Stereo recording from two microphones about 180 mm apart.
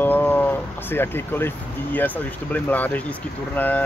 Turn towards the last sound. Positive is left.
turn(degrees=10)  # may be behind; listen again after turning